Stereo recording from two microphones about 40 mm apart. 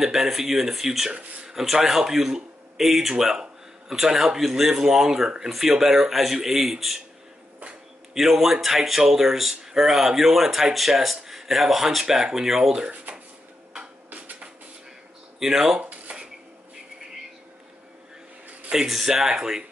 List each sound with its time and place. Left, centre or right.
0.0 s speech: centre
8.1 s speech: centre
13.1 s a sound: right
15.3 s speech: centre
15.8 s a sound: right
18.9 s speech: centre